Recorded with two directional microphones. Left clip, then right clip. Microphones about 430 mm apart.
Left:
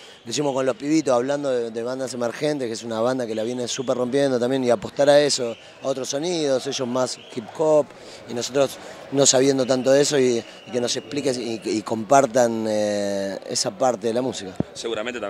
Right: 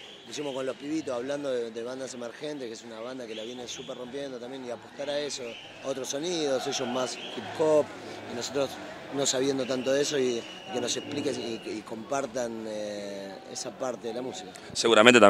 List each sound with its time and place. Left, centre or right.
0.3 s a man's voice: left
14.8 s speech: right